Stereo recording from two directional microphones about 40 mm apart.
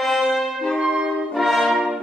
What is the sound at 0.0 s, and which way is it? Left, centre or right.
Brass instrument, centre.